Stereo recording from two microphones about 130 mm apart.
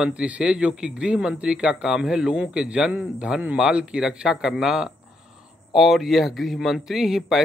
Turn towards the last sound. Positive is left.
turn(degrees=0)  # may be behind; listen again after turning